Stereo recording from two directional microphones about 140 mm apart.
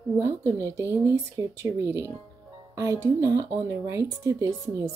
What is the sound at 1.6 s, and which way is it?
Speech, 20° right (ahead or behind).